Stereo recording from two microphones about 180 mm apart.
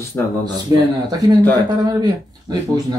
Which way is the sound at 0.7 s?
20° right (ahead or behind).